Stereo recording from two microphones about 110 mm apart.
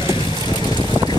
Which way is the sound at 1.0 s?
25° right (ahead or behind).